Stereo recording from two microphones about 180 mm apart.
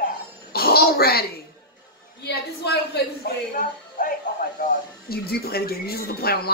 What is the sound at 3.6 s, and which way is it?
Music, 45° left (ahead or behind).